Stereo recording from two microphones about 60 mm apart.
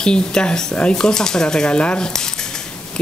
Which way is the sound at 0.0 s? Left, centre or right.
Centre.